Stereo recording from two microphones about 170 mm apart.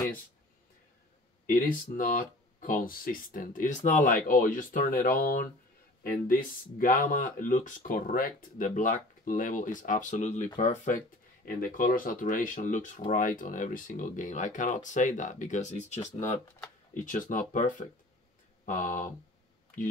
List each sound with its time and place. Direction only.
1.4 s speech: 55° left (ahead or behind)
11.4 s speech: 60° left (ahead or behind)